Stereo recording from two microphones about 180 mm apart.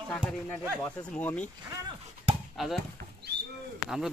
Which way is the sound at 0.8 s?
10° left (ahead or behind).